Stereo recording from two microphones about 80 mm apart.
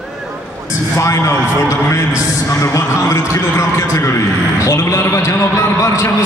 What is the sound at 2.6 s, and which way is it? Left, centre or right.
A man's voice, left.